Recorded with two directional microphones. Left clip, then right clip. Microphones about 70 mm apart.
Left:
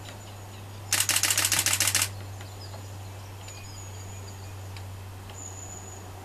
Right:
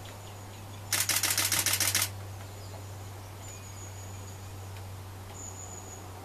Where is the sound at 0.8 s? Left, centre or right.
Left.